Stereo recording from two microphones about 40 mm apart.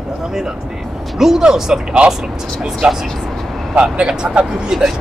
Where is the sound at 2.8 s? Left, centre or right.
Right.